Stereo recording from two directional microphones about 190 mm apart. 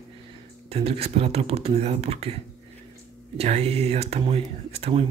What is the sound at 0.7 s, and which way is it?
Speech, 30° right (ahead or behind).